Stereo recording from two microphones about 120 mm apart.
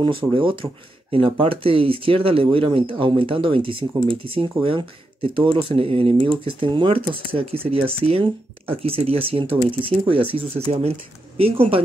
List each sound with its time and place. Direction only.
0.0 s speech: 45° right (ahead or behind)